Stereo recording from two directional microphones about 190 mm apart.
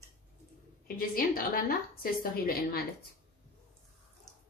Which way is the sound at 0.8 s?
50° left (ahead or behind).